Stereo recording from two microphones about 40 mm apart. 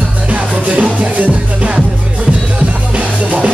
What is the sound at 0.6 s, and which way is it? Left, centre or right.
Music, right.